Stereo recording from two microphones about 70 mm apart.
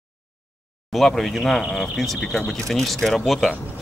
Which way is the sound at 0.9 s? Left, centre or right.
Centre.